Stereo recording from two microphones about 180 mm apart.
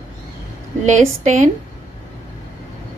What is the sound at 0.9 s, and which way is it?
Speech, 40° right (ahead or behind).